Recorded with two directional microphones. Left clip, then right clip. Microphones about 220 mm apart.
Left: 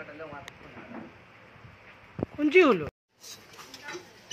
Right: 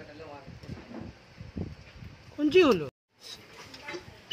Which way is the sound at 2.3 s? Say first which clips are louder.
Left 1 dB; 20° right (ahead or behind).